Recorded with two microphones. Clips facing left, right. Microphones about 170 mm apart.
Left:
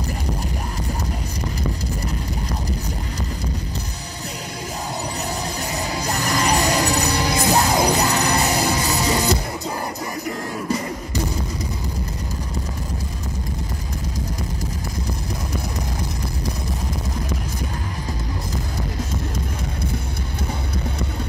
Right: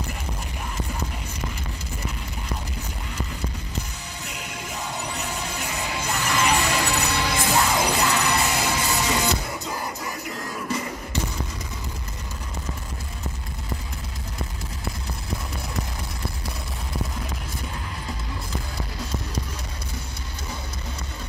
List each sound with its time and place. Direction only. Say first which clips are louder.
5.6 s music: left 4 dB; 35° left (ahead or behind)